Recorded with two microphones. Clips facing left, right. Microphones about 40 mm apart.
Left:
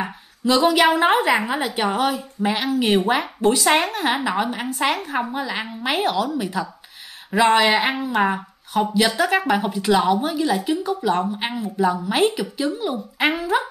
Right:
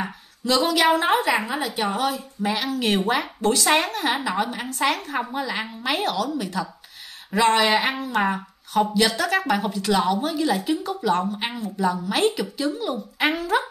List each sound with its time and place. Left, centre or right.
0.7 s a woman's voice: centre
3.8 s a woman's voice: left
7.6 s speech: left